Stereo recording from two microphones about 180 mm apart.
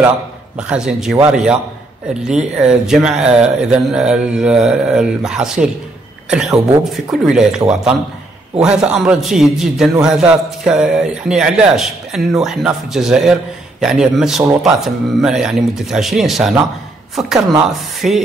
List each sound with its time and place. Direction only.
0.6 s a man's voice: 5° right (ahead or behind)
2.6 s a man's voice: 5° right (ahead or behind)